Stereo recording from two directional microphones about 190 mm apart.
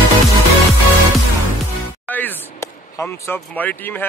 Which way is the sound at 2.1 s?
10° left (ahead or behind).